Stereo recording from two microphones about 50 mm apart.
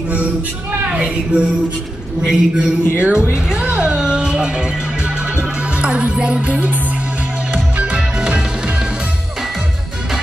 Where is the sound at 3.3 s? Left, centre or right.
Centre.